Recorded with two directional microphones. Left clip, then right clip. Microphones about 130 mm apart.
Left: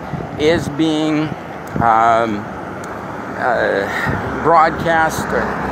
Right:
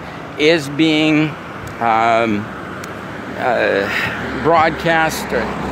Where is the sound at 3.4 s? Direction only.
35° right (ahead or behind).